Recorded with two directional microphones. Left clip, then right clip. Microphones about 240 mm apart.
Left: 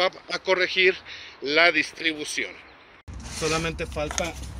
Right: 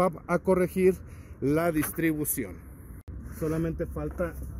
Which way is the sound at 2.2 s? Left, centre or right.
Centre.